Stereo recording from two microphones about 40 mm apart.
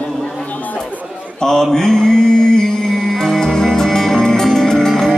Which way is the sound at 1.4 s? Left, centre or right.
Centre.